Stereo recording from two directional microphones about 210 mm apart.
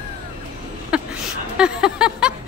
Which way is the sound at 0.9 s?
5° right (ahead or behind).